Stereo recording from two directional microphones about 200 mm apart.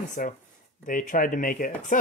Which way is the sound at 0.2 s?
40° left (ahead or behind).